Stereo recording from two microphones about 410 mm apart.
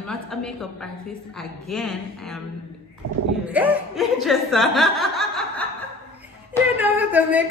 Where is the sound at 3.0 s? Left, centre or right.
Right.